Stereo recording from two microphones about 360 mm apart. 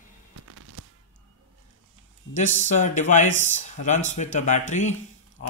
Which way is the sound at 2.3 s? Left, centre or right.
Centre.